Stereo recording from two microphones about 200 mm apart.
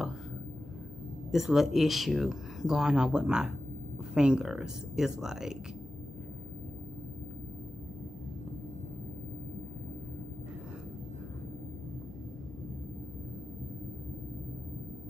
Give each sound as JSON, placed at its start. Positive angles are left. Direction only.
{"t": 1.3, "sound": "speech", "side_deg": 0}